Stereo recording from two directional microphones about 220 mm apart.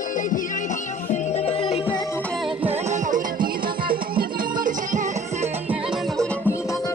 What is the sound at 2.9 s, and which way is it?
Music, 35° right (ahead or behind).